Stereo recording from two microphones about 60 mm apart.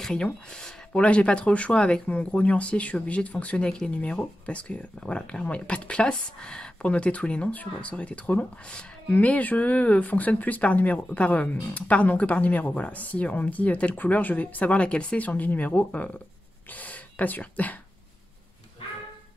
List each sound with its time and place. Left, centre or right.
0.0 s speech: centre